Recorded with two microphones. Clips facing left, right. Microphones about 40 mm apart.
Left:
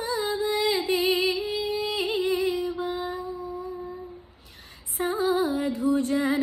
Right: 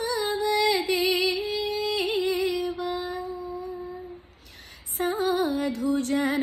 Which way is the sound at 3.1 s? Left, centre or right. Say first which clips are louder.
Even; right.